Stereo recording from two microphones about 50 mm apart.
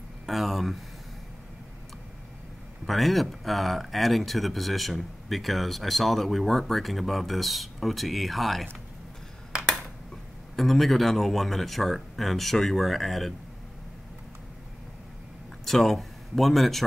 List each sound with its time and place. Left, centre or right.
0.3 s speech: centre
2.9 s speech: centre
10.5 s speech: centre
15.6 s speech: centre